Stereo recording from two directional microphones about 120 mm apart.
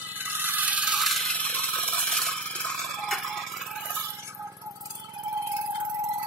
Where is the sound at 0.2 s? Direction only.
15° right (ahead or behind); by 3.4 s centre (ahead or behind).